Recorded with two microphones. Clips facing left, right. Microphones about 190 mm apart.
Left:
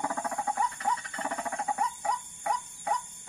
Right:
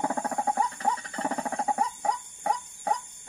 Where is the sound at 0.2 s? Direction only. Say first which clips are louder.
Right 3 dB; 40° right (ahead or behind).